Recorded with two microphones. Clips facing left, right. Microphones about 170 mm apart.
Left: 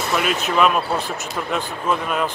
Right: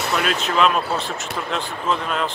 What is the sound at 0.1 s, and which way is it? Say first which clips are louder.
Speech: left 2 dB; 5° left (ahead or behind).